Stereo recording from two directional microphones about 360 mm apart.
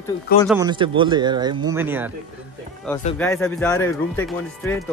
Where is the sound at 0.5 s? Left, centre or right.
Centre.